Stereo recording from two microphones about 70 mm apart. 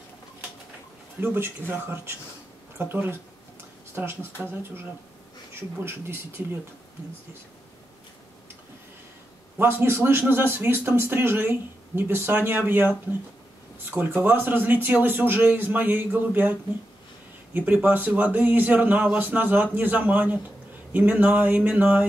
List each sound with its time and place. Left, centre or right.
1.2 s a man's voice: right
9.6 s a man's voice: right
17.8 s a man's voice: right